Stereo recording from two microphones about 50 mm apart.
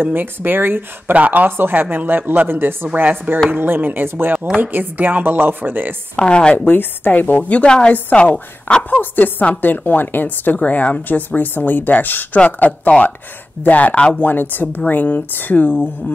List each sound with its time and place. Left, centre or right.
0.0 s speech: right
2.9 s speech: right
6.1 s a woman's voice: left
6.5 s a woman's voice: left
7.6 s a woman's voice: centre
7.9 s a woman's voice: left
8.9 s a woman's voice: left